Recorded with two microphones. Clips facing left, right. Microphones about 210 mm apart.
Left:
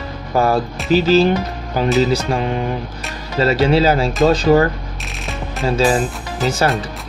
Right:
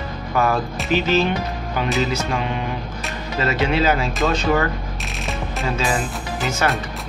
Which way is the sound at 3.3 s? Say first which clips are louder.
Left 6 dB; 35° left (ahead or behind).